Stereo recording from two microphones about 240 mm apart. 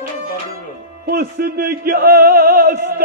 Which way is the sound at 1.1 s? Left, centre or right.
Right.